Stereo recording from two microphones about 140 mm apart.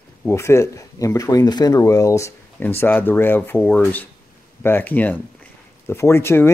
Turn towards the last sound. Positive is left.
turn(degrees=15)  # may be behind; listen again after turning